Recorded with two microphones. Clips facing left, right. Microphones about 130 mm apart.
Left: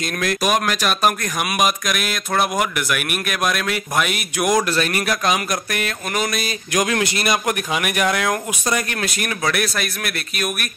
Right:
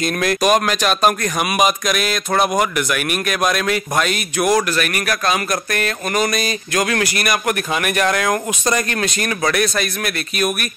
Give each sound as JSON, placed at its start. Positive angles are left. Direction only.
{"t": 0.0, "sound": "speech", "side_deg": 0}
{"t": 4.6, "sound": "speech", "side_deg": 25}
{"t": 6.7, "sound": "a man's voice", "side_deg": 20}
{"t": 7.7, "sound": "speech", "side_deg": 10}